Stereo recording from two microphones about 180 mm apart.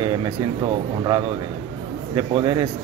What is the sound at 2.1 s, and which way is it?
Speech, 20° right (ahead or behind).